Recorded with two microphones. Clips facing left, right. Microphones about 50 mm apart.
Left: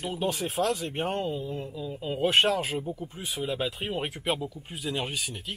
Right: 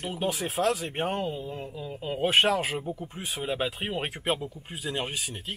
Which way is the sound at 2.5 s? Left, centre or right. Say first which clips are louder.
Right 1 dB; right.